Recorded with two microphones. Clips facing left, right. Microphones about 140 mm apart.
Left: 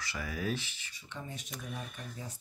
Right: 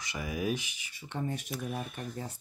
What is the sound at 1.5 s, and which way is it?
Speech, 5° right (ahead or behind).